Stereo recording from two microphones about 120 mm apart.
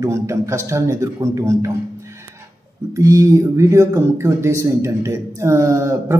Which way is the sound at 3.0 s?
25° right (ahead or behind).